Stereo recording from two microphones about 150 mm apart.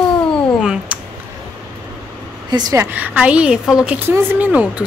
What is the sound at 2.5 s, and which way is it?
Speech, 25° right (ahead or behind).